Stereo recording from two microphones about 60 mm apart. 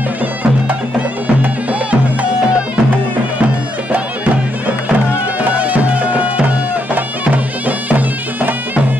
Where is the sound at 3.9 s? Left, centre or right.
Right.